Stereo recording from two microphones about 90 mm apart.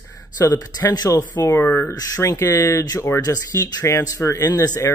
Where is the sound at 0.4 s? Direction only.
45° left (ahead or behind).